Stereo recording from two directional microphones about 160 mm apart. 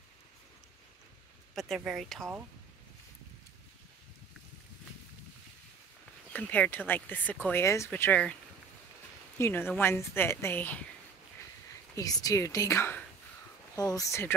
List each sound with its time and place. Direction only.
1.5 s speech: centre (ahead or behind)
6.3 s speech: 10° left (ahead or behind)
9.4 s speech: 15° left (ahead or behind)
11.9 s speech: 20° left (ahead or behind)